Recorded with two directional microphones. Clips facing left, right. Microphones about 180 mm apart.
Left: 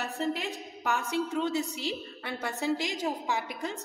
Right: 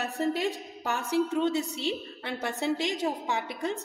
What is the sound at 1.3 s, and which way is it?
Speech, 20° right (ahead or behind).